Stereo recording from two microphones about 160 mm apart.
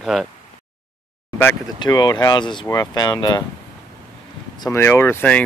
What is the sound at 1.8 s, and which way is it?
Speech, 25° left (ahead or behind).